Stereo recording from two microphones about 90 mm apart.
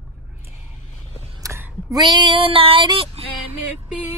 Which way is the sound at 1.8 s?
50° right (ahead or behind).